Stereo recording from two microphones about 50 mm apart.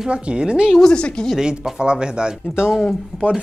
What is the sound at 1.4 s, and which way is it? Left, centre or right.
Speech, centre.